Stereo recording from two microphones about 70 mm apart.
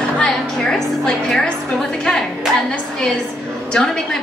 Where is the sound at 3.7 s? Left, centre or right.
Centre.